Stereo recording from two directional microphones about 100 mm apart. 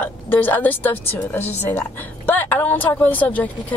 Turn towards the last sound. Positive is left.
turn(degrees=15)  # may be behind; listen again after turning